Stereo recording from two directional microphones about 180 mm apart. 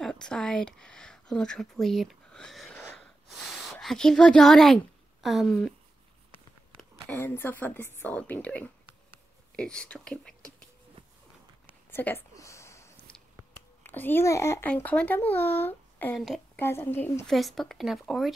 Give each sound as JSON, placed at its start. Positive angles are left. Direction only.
{"t": 0.0, "sound": "speech", "side_deg": 5}
{"t": 2.8, "sound": "a sound", "side_deg": 5}
{"t": 6.8, "sound": "a woman's voice", "side_deg": 10}
{"t": 11.9, "sound": "a sound", "side_deg": 10}
{"t": 13.8, "sound": "a child's voice", "side_deg": 10}
{"t": 17.3, "sound": "speech", "side_deg": 0}